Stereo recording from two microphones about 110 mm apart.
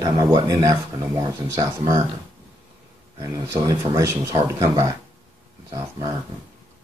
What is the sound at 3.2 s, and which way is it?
Speech, 30° right (ahead or behind).